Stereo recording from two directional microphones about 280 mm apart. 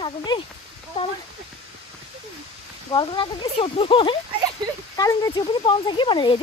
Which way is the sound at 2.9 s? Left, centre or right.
Centre.